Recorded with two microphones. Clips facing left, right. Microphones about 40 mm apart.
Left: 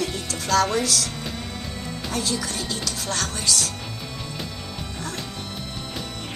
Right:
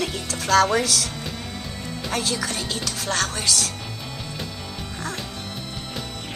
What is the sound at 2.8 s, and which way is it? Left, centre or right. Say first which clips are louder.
Speech: right 2 dB; right.